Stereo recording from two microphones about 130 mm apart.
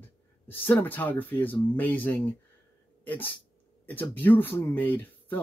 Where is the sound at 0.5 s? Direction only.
15° left (ahead or behind).